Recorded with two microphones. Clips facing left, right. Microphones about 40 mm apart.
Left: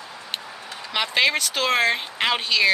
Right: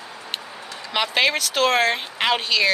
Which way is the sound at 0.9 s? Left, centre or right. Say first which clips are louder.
Right 1 dB; centre.